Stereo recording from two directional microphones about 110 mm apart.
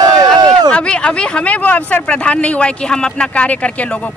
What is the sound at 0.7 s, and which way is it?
Speech, 10° left (ahead or behind).